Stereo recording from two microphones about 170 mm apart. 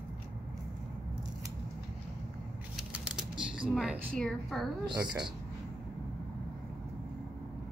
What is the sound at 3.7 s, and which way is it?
Speech, centre (ahead or behind).